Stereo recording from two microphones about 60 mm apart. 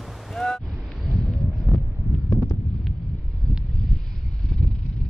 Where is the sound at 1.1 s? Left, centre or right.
Centre.